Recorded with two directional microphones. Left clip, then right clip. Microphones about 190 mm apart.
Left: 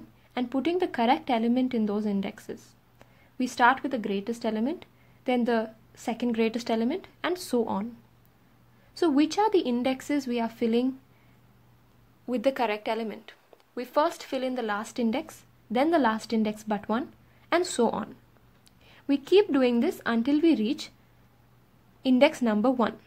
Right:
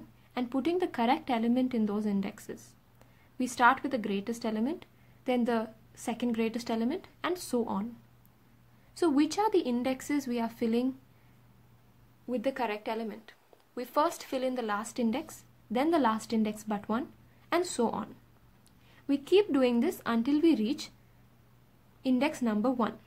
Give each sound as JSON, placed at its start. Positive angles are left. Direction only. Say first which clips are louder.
{"t": 0.3, "sound": "speech", "louder": "left 3 dB", "side_deg": 15}
{"t": 8.9, "sound": "speech", "louder": "left 3 dB", "side_deg": 15}
{"t": 12.3, "sound": "a woman's voice", "louder": "left 6 dB", "side_deg": 35}
{"t": 22.0, "sound": "a woman's voice", "louder": "left 8 dB", "side_deg": 25}